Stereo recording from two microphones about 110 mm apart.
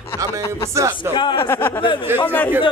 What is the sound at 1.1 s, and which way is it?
Speech, 45° left (ahead or behind).